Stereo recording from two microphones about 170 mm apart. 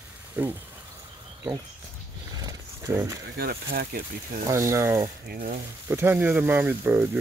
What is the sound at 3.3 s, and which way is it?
Speech, 65° right (ahead or behind).